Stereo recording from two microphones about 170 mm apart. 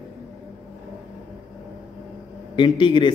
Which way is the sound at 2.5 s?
30° left (ahead or behind).